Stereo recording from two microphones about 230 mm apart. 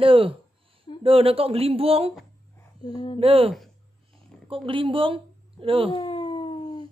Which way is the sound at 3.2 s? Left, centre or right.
Right.